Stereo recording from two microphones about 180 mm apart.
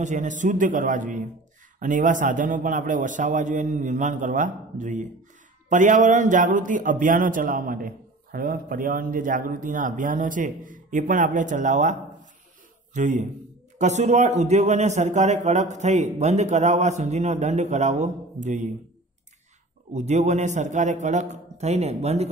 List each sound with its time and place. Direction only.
0.0 s a man's voice: 45° right (ahead or behind)
19.9 s a man's voice: 40° right (ahead or behind)